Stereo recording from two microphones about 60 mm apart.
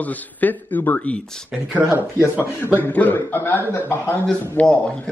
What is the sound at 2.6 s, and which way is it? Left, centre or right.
Speech, left.